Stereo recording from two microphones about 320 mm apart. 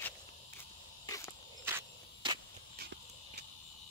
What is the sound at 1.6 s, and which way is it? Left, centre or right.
Cricket, centre.